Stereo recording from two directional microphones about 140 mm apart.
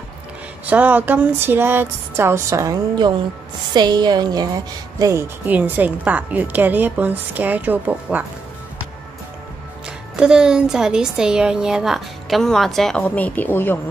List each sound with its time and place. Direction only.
0.7 s a woman's voice: 10° right (ahead or behind)
5.4 s a woman's voice: 10° right (ahead or behind)
9.8 s speech: 5° right (ahead or behind); by 13.7 s 15° left (ahead or behind)